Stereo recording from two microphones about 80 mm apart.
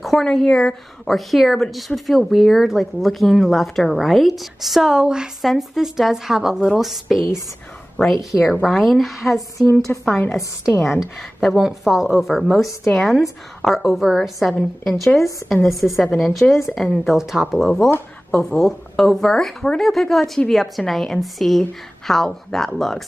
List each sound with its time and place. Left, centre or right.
0.0 s a woman's voice: centre
9.9 s a woman's voice: centre
10.3 s a woman's voice: centre
15.5 s a woman's voice: centre